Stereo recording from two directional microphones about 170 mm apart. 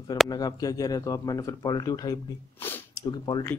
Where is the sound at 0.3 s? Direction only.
20° left (ahead or behind).